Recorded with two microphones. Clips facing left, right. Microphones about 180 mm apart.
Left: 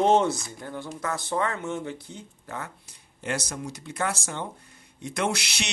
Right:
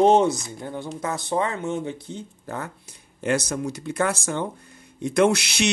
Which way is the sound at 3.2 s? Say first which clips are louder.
Right 7 dB; 50° right (ahead or behind).